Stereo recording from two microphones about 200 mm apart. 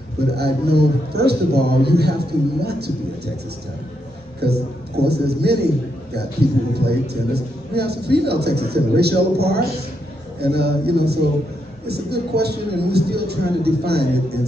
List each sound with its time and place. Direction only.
0.4 s a man's voice: 55° right (ahead or behind)
4.4 s a woman's voice: 55° right (ahead or behind)
6.7 s a man's voice: 55° right (ahead or behind)